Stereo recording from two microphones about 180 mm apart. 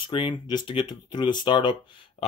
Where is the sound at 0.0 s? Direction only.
30° left (ahead or behind).